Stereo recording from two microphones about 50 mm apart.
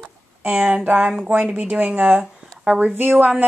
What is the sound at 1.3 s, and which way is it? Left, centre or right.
Speech, right.